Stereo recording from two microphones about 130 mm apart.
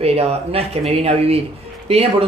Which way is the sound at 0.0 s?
50° right (ahead or behind).